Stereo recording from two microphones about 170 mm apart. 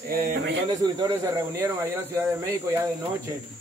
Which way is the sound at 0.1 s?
60° right (ahead or behind).